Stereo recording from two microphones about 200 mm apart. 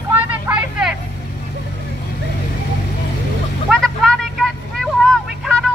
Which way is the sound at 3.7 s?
Centre (ahead or behind).